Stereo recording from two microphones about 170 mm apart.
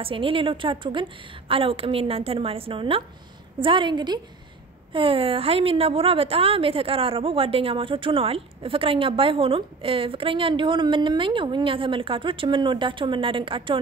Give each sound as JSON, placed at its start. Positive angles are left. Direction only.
{"t": 0.0, "sound": "a woman's voice", "side_deg": -30}